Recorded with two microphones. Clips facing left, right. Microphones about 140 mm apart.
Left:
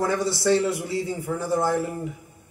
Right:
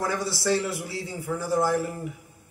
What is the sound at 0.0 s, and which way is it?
A man's voice, 20° left (ahead or behind).